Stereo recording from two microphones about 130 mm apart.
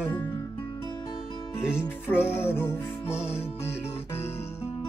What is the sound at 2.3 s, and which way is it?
Music, 15° left (ahead or behind).